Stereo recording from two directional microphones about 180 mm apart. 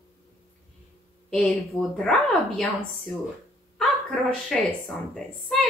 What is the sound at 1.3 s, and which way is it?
A woman's voice, centre (ahead or behind).